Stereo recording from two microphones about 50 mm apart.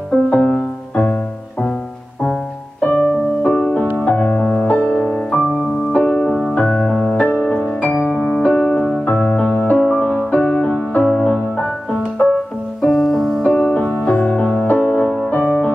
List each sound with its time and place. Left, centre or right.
0.1 s music: left
3.4 s music: left
5.3 s music: centre
5.9 s music: left
7.8 s piano: left
8.4 s music: left
12.8 s music: centre
13.5 s music: left
14.7 s music: left
15.0 s music: centre
15.3 s music: left